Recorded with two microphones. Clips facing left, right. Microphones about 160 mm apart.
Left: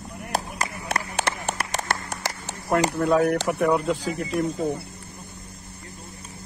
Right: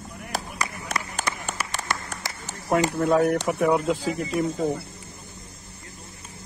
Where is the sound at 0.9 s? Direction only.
70° left (ahead or behind).